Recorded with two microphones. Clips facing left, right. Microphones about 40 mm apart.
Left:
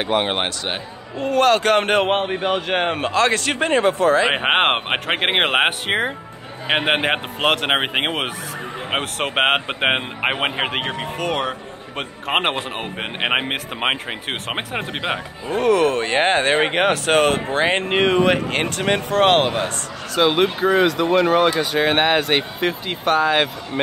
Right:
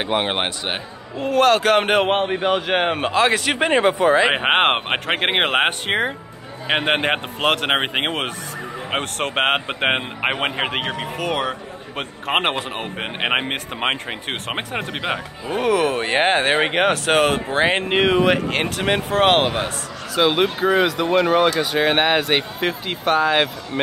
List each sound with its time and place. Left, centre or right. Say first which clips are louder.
0.0 s speech: left 1 dB; centre
3.8 s speech: even; right
4.3 s speech: even; centre
15.6 s speech: left 2 dB; centre